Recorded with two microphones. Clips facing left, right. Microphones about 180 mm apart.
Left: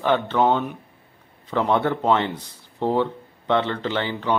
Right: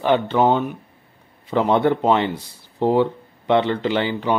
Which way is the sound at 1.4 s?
20° right (ahead or behind).